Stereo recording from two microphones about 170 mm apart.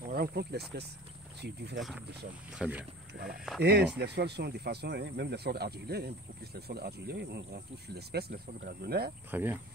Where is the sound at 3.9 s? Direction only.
75° right (ahead or behind).